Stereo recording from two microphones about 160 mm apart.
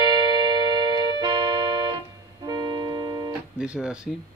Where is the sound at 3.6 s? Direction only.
5° right (ahead or behind).